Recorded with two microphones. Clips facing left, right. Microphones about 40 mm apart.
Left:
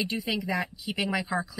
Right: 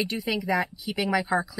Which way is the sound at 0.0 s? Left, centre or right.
Centre.